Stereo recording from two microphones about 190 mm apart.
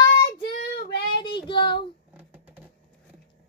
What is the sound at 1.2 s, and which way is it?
Child singing, 25° left (ahead or behind).